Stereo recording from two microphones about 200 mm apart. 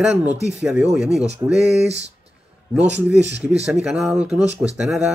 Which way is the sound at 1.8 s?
30° right (ahead or behind).